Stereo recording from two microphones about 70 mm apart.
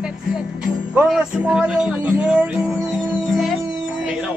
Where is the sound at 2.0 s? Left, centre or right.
Centre.